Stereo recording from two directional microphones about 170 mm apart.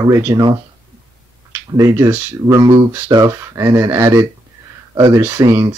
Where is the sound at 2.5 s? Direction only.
25° right (ahead or behind).